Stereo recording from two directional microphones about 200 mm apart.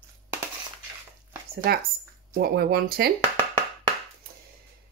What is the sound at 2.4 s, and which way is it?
Speech, 55° right (ahead or behind).